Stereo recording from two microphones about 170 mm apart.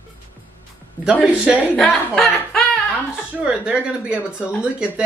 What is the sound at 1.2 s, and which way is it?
A woman's voice, centre (ahead or behind).